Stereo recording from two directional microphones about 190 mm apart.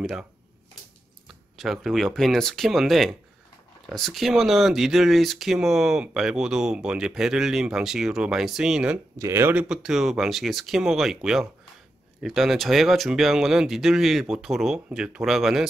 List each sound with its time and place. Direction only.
0.0 s speech: 5° right (ahead or behind)
1.6 s speech: centre (ahead or behind)